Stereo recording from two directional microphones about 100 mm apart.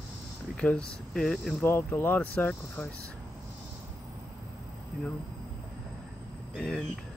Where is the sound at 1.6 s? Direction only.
20° left (ahead or behind).